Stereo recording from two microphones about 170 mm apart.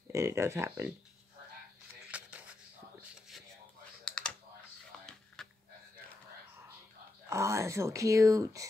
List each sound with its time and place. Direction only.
0.1 s speech: 15° right (ahead or behind)
2.0 s a sound: 5° right (ahead or behind)
4.0 s computer keyboard: 5° left (ahead or behind)
7.2 s speech: 15° right (ahead or behind)